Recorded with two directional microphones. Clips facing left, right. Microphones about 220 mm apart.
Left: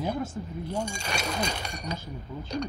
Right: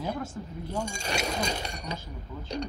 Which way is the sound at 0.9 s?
45° right (ahead or behind).